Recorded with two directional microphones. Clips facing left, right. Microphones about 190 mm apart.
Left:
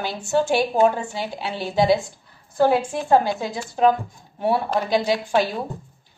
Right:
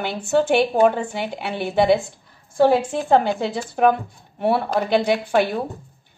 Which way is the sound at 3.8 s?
60° right (ahead or behind).